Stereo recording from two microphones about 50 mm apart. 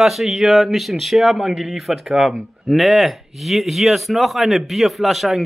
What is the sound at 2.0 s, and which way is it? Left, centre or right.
Speech, centre.